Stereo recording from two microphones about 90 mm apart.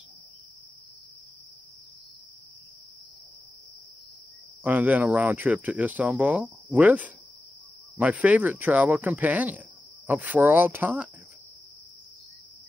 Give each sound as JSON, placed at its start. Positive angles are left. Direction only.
{"t": 4.6, "sound": "speech", "side_deg": -20}